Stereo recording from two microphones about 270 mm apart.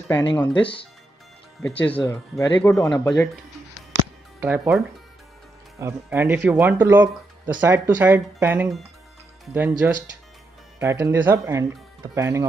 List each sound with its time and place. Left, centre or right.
0.3 s speech: centre
0.6 s speech: centre
1.6 s speech: centre
4.4 s speech: centre
10.8 s speech: centre